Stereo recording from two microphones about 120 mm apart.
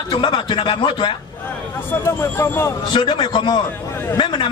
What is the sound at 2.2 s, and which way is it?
Speech, 20° left (ahead or behind).